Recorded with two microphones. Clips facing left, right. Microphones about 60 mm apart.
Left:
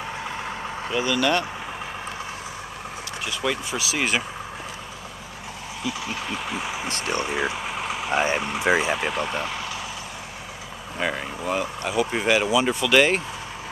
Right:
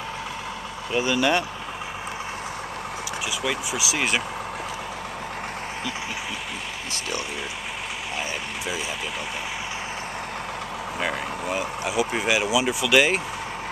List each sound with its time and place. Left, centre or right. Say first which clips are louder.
0.9 s speech: right 1 dB; right
3.4 s speech: left 2 dB; centre
6.9 s speech: left 3 dB; left
8.6 s speech: left 11 dB; left
9.1 s speech: left 5 dB; centre
11.0 s speech: left 2 dB; centre